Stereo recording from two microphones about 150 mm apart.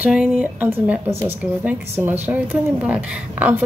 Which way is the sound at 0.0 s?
10° right (ahead or behind).